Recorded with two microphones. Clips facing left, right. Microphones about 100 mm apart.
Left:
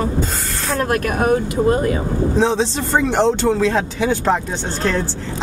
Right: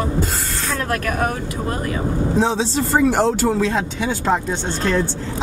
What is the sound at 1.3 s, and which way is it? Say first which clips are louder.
Speech: left 9 dB; 35° left (ahead or behind).